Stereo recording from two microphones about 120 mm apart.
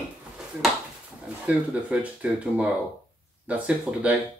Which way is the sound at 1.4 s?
10° right (ahead or behind).